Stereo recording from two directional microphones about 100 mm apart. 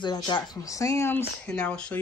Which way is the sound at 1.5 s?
10° left (ahead or behind).